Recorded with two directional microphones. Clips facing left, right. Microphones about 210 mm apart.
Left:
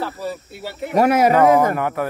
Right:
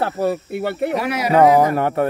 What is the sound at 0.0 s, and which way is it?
Speech, 60° right (ahead or behind).